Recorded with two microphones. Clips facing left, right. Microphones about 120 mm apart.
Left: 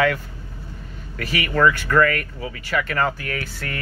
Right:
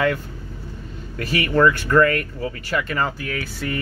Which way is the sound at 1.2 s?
30° right (ahead or behind).